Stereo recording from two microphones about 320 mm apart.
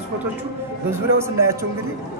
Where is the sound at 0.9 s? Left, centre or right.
Centre.